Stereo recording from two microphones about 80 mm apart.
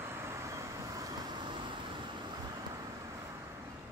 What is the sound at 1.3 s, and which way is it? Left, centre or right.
Vehicle, right.